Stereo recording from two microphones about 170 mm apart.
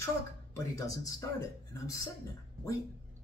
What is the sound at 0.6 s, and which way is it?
Speech, 20° left (ahead or behind).